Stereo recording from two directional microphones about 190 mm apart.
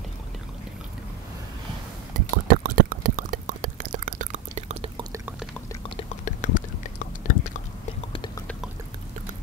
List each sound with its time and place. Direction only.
2.1 s a sound: 50° right (ahead or behind)
3.9 s chewing: 40° right (ahead or behind)
5.1 s pour: 10° right (ahead or behind)
5.9 s chewing: 40° left (ahead or behind)
8.1 s chewing: 25° left (ahead or behind)